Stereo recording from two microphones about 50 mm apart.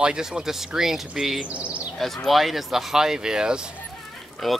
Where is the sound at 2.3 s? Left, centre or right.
Centre.